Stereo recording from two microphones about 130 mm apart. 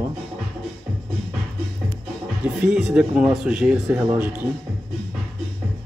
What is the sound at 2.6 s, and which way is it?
Speech, 5° right (ahead or behind).